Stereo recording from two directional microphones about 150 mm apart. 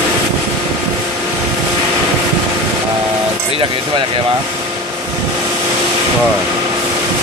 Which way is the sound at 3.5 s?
35° right (ahead or behind).